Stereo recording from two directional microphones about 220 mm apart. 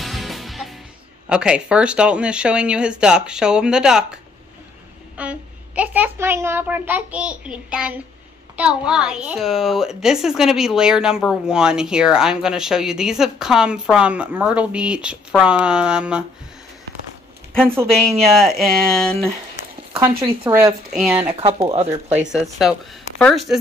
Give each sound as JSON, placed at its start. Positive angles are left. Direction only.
{"t": 0.0, "sound": "music", "side_deg": 0}
{"t": 1.3, "sound": "a woman's voice", "side_deg": -5}
{"t": 18.3, "sound": "a woman's voice", "side_deg": 0}
{"t": 20.0, "sound": "a child's voice", "side_deg": -10}
{"t": 21.3, "sound": "speech", "side_deg": -25}
{"t": 22.3, "sound": "a woman's voice", "side_deg": 0}